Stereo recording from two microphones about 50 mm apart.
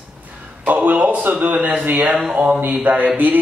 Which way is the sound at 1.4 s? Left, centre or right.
Right.